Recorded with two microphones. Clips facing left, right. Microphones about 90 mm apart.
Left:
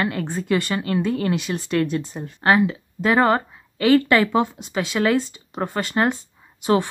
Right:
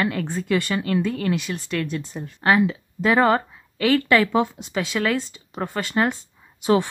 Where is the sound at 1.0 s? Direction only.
20° left (ahead or behind).